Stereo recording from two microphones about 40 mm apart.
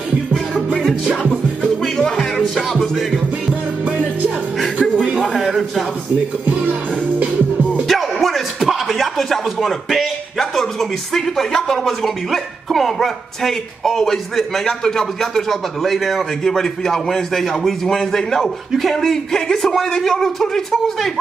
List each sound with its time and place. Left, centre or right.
1.6 s music: centre
4.9 s a sound: right
5.5 s a sound: centre
6.7 s music: right
7.9 s music: centre
8.5 s speech: centre
16.4 s a man's voice: centre